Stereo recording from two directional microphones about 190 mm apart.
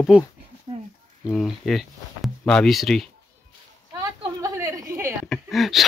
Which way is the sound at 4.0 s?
15° right (ahead or behind).